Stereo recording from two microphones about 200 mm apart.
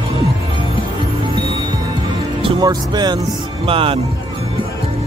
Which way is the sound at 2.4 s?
25° right (ahead or behind).